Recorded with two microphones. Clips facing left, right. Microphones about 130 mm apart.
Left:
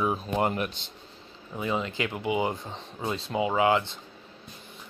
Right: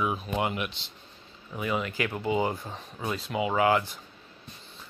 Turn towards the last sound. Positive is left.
turn(degrees=25)  # may be behind; listen again after turning